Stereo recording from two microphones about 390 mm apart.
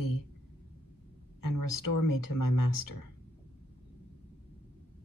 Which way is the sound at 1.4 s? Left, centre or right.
Left.